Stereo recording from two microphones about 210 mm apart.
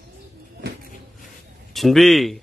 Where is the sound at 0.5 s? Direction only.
50° right (ahead or behind).